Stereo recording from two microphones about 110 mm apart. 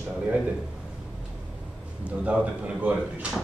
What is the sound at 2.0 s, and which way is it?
A man's voice, 10° right (ahead or behind).